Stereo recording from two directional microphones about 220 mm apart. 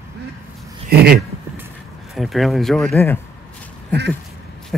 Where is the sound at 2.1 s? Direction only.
Centre (ahead or behind).